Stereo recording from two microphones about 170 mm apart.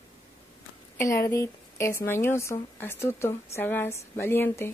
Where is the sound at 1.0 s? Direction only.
15° left (ahead or behind).